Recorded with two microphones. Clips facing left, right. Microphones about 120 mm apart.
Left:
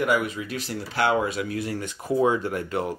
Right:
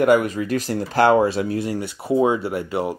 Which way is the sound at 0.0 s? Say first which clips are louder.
Right 7 dB; 45° right (ahead or behind).